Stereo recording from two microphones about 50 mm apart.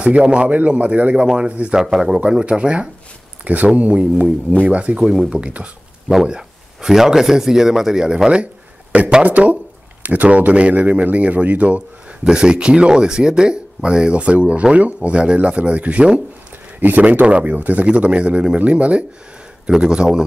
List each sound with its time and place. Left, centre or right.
0.0 s speech: right
1.2 s speech: centre
1.5 s speech: right
1.8 s speech: centre
3.4 s speech: right
4.9 s speech: centre
9.2 s speech: right
12.3 s speech: centre
19.6 s speech: centre